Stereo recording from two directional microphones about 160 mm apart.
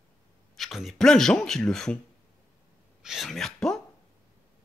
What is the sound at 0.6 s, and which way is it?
Speech, centre (ahead or behind).